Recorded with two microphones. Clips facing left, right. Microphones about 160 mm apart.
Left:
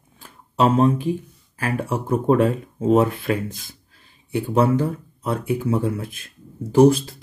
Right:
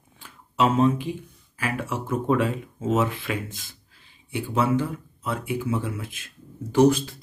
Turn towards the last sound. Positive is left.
turn(degrees=30)  # may be behind; listen again after turning